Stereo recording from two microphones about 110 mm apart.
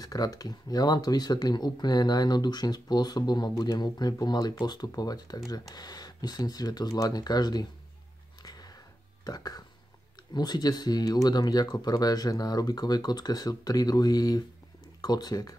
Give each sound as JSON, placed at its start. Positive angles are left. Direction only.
{"t": 0.0, "sound": "speech", "side_deg": 35}
{"t": 8.4, "sound": "music", "side_deg": 35}
{"t": 9.2, "sound": "speech", "side_deg": 35}